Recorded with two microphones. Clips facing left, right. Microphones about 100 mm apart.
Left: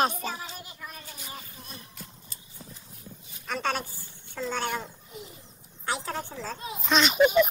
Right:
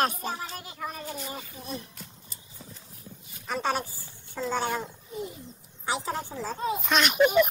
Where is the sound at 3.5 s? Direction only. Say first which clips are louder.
Right 1 dB; 5° right (ahead or behind).